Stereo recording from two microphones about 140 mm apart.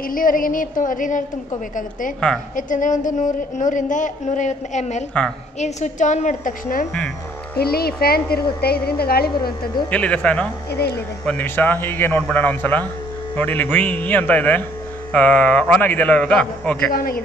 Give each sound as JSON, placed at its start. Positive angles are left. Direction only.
{"t": 0.0, "sound": "a sound", "side_deg": 80}
{"t": 2.1, "sound": "a man's voice", "side_deg": 5}
{"t": 2.5, "sound": "speech", "side_deg": 70}
{"t": 7.6, "sound": "a woman's voice", "side_deg": 90}
{"t": 9.8, "sound": "a man's voice", "side_deg": 10}
{"t": 16.9, "sound": "a woman's voice", "side_deg": 90}